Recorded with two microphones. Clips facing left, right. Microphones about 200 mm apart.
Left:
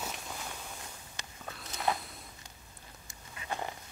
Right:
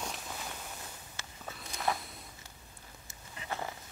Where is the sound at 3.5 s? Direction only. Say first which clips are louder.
Left 1 dB; 15° left (ahead or behind).